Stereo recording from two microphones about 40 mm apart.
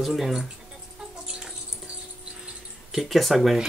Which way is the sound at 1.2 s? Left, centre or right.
Centre.